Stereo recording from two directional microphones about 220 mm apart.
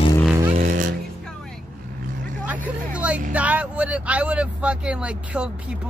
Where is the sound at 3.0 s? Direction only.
5° right (ahead or behind).